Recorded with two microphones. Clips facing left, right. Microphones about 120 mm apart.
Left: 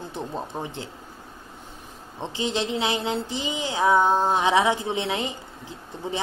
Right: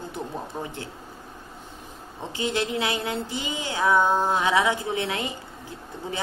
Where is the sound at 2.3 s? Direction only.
20° left (ahead or behind).